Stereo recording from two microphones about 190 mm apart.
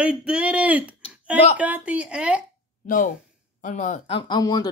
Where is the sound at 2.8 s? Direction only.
45° left (ahead or behind); by 4.7 s 20° left (ahead or behind).